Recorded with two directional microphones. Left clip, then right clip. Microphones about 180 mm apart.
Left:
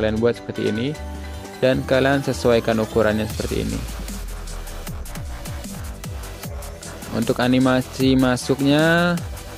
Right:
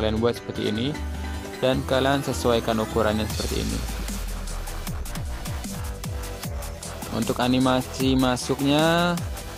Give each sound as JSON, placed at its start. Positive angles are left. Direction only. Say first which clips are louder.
{"t": 0.0, "sound": "speech", "louder": "left 4 dB", "side_deg": 15}
{"t": 7.2, "sound": "speech", "louder": "left 4 dB", "side_deg": 20}